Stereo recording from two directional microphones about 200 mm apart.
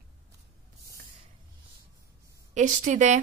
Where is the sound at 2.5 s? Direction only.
35° right (ahead or behind).